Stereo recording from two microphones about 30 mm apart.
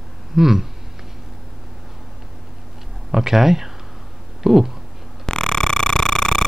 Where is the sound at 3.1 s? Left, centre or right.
Centre.